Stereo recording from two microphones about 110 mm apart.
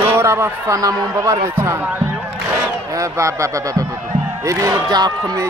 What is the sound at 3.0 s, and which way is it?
Speech, 30° right (ahead or behind).